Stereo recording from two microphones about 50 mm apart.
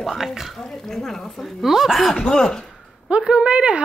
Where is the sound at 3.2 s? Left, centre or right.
Centre.